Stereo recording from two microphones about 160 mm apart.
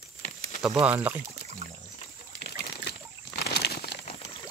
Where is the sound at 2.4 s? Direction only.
90° left.